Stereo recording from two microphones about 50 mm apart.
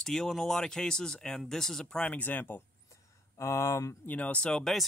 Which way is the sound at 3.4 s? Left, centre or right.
Left.